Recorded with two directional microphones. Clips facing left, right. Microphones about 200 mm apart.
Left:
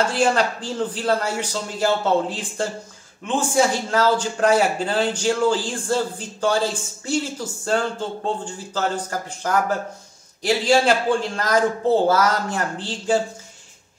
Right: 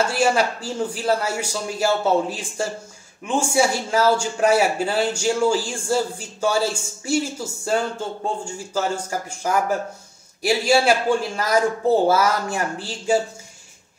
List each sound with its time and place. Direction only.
0.1 s a man's voice: 10° right (ahead or behind)